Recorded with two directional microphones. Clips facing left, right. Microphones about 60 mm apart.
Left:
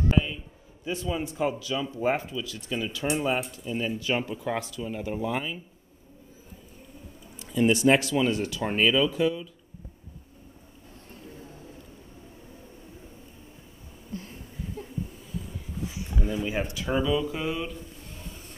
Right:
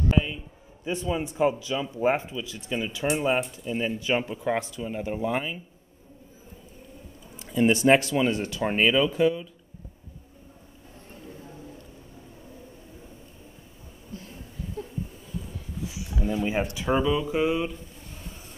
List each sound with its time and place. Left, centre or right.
0.8 s speech: right
7.3 s speech: right
15.9 s a sound: left
16.4 s speech: right